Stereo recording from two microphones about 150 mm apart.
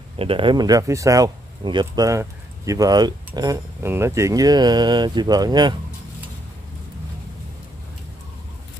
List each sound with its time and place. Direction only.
0.2 s speech: 35° right (ahead or behind)